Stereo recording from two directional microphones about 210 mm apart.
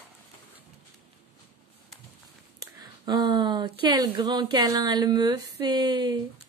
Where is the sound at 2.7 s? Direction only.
20° right (ahead or behind).